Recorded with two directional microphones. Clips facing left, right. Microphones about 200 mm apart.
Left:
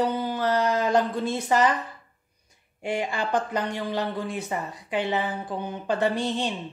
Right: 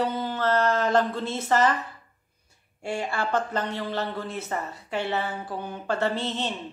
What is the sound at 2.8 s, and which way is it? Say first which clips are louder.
A woman's voice: left 1 dB; 15° left (ahead or behind).